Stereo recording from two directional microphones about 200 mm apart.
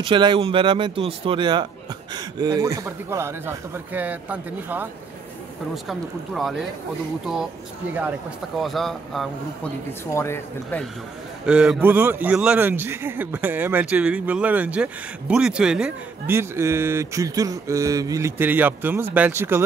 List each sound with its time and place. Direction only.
0.0 s a man's voice: 25° right (ahead or behind); by 4.8 s 10° right (ahead or behind)
5.9 s speech: centre (ahead or behind)
8.5 s speech: centre (ahead or behind)
10.1 s speech: 15° left (ahead or behind)
11.4 s a man's voice: 5° right (ahead or behind)